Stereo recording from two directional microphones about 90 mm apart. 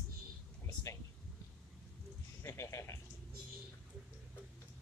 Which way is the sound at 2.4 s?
35° left (ahead or behind).